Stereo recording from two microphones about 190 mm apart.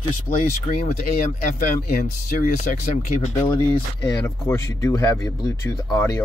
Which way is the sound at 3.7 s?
15° left (ahead or behind).